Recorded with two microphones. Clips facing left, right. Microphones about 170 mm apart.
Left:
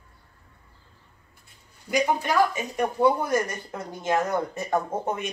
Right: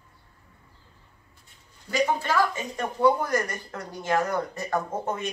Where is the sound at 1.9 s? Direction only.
15° left (ahead or behind).